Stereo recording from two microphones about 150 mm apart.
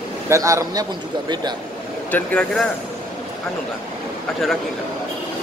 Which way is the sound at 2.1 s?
5° left (ahead or behind).